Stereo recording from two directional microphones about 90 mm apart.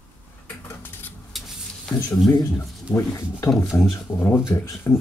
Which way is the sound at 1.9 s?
20° left (ahead or behind).